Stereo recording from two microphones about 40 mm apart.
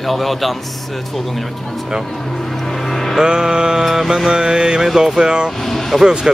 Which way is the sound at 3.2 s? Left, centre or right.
Centre.